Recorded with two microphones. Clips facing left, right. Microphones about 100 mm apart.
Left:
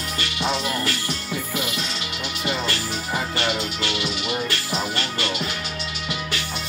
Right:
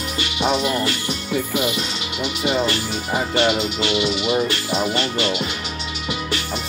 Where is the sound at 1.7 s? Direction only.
20° right (ahead or behind).